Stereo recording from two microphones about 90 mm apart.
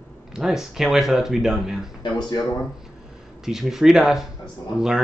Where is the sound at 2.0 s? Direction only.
50° left (ahead or behind).